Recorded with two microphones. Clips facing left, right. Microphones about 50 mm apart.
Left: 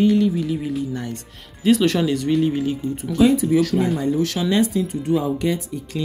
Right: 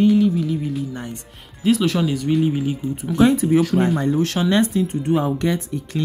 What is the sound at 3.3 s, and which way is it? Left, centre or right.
Speech, right.